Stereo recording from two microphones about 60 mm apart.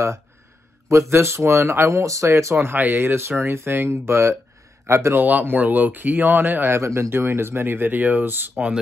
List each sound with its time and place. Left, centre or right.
0.8 s speech: right
2.5 s speech: right
3.2 s a man's voice: right
5.1 s speech: right
6.7 s speech: right